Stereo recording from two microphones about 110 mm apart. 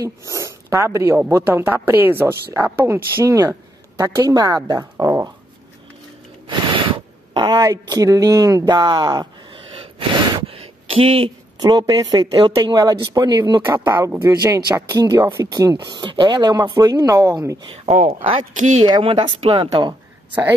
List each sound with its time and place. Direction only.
0.0 s speech: 30° right (ahead or behind)
6.5 s a sound: 45° right (ahead or behind)
7.5 s speech: 30° right (ahead or behind)
9.9 s gasp: 50° right (ahead or behind)
11.6 s speech: 35° right (ahead or behind)
13.8 s speech: 25° right (ahead or behind)
17.6 s speech: 60° right (ahead or behind)